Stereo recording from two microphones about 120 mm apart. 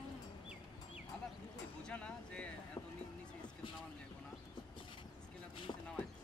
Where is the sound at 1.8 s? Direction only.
10° left (ahead or behind).